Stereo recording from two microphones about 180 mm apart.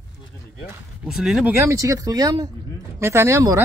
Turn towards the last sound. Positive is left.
turn(degrees=-15)  # may be behind; listen again after turning